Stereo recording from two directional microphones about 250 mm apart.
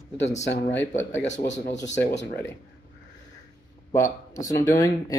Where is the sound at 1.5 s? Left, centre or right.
Left.